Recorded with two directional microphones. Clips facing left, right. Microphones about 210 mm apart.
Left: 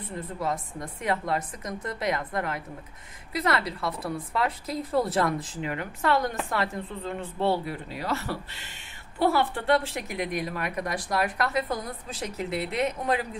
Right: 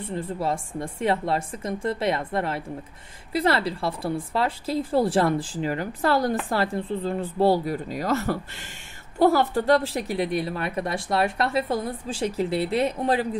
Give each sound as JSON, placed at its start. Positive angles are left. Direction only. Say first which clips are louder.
{"t": 0.0, "sound": "a woman's voice", "louder": "right 4 dB", "side_deg": -30}